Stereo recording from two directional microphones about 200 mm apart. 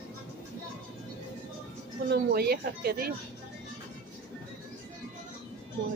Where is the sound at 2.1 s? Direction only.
50° right (ahead or behind).